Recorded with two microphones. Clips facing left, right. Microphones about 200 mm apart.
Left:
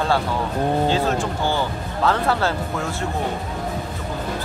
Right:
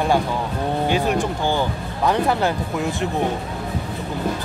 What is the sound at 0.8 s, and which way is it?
Speech, 15° right (ahead or behind).